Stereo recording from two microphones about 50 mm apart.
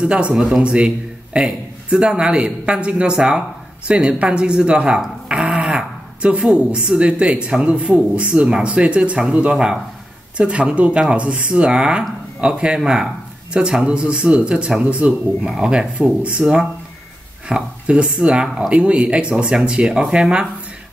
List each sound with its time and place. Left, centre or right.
0.0 s a man's voice: right
15.4 s a man's voice: centre